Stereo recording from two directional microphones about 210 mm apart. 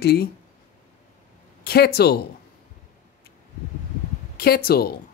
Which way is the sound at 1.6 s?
50° left (ahead or behind).